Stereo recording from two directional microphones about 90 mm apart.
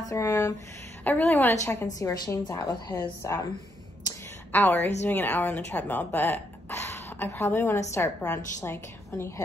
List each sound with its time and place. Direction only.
0.1 s a woman's voice: 30° left (ahead or behind)
1.0 s a woman's voice: 20° left (ahead or behind)
2.0 s a woman's voice: 40° left (ahead or behind)
4.5 s a woman's voice: 20° left (ahead or behind)